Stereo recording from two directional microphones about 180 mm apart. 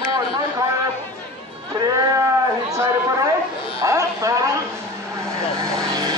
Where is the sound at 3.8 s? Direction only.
20° right (ahead or behind).